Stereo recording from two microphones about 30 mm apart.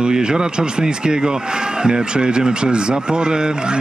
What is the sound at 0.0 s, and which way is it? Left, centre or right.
Speech, right.